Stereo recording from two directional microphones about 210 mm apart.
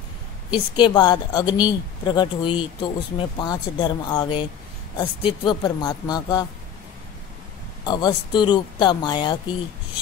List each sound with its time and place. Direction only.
0.5 s speech: 20° left (ahead or behind)
7.8 s speech: 20° left (ahead or behind)